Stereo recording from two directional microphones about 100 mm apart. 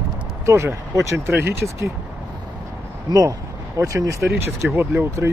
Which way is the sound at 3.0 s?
35° right (ahead or behind).